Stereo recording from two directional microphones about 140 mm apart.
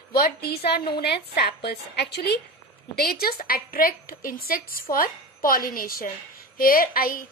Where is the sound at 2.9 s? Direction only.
90° left.